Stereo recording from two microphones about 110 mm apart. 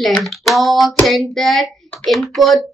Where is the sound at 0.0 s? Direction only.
Centre (ahead or behind).